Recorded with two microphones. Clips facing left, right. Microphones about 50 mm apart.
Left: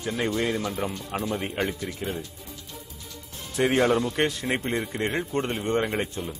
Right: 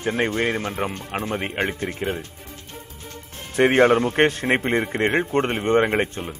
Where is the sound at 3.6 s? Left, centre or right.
Right.